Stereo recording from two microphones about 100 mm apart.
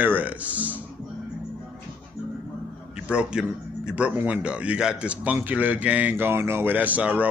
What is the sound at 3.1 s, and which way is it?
A man's voice, 10° right (ahead or behind).